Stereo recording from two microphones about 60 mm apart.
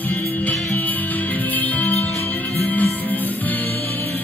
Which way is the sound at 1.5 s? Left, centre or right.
Left.